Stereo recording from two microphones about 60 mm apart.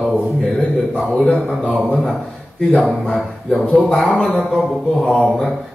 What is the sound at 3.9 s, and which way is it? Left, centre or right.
A man's voice, centre.